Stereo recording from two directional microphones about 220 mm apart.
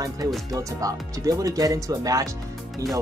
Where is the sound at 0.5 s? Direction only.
15° right (ahead or behind).